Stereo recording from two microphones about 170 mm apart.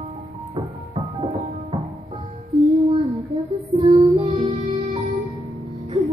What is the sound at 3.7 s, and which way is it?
Child singing, 40° right (ahead or behind).